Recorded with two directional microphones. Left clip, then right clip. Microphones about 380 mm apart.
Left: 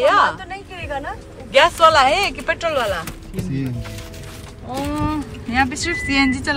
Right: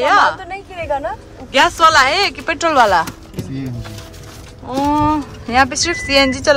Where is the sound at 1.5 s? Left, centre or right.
Centre.